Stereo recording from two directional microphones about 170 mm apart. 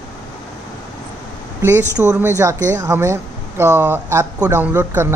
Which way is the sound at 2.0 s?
15° right (ahead or behind).